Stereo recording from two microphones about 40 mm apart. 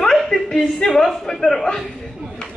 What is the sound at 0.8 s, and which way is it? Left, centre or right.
Speech, left.